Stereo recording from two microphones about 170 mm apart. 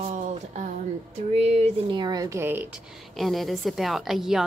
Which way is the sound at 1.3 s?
40° right (ahead or behind).